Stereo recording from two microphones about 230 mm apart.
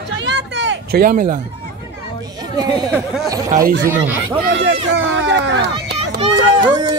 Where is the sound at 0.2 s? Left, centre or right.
Right.